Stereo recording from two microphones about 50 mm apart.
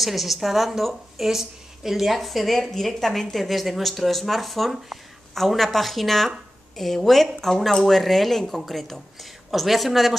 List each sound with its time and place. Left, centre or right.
0.0 s a woman's voice: centre